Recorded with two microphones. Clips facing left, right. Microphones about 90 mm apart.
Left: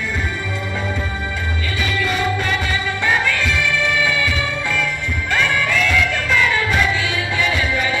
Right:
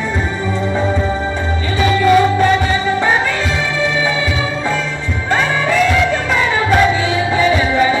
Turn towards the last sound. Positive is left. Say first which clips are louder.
# right 7 dB
turn(degrees=-30)  # may be behind; listen again after turning